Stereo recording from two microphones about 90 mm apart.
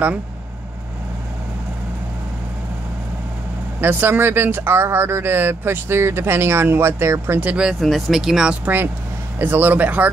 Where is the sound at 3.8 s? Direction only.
20° right (ahead or behind).